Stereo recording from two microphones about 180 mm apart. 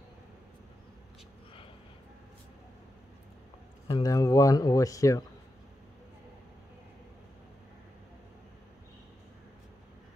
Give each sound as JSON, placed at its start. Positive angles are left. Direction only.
{"t": 3.8, "sound": "speech", "side_deg": 20}